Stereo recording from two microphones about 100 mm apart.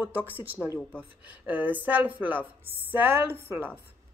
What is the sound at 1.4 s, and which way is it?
A woman's voice, 15° right (ahead or behind).